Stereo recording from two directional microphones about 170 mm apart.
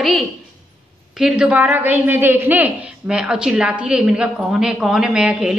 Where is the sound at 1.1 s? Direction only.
5° right (ahead or behind).